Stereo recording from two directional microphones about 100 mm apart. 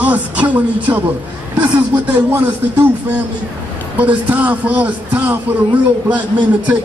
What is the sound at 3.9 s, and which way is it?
A man's voice, 15° right (ahead or behind).